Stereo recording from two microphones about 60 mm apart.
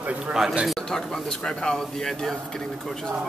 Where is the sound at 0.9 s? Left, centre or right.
Centre.